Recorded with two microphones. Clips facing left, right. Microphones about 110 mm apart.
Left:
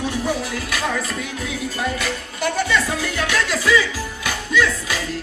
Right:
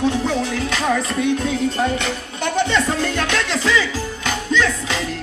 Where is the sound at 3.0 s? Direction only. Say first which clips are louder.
Right 2 dB; 10° left (ahead or behind).